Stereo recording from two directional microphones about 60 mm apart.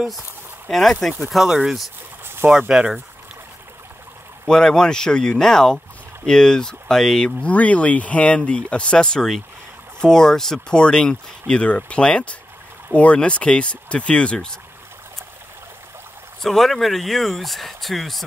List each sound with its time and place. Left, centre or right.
0.7 s speech: centre
2.4 s speech: right
4.5 s speech: centre
7.2 s speech: left
16.4 s speech: centre